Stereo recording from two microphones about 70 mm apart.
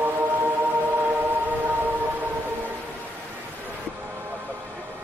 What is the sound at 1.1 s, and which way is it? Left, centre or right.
Civil defense siren, right.